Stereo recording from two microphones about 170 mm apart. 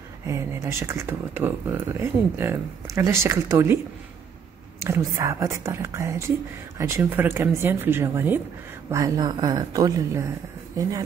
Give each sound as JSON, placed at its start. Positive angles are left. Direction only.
{"t": 0.3, "sound": "speech", "side_deg": -15}